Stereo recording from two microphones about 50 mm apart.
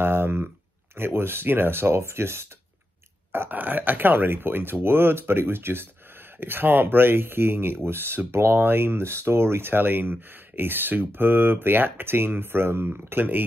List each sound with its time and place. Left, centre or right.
0.0 s a sound: right
0.9 s speech: right
3.3 s burping: right
3.5 s speech: right